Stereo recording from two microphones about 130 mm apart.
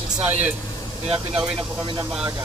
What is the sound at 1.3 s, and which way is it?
Speech, 5° right (ahead or behind).